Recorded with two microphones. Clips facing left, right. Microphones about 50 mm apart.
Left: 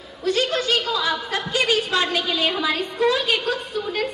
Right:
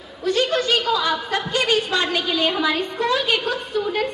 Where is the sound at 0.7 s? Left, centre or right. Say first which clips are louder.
Right 2 dB; centre.